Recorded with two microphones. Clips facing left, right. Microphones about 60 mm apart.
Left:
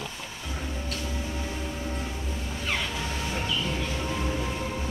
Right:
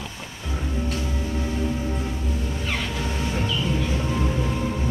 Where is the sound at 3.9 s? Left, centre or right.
Centre.